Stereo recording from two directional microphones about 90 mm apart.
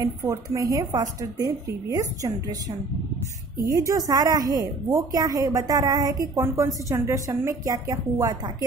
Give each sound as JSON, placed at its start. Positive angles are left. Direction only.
{"t": 0.2, "sound": "a woman's voice", "side_deg": -30}
{"t": 3.6, "sound": "a woman's voice", "side_deg": -40}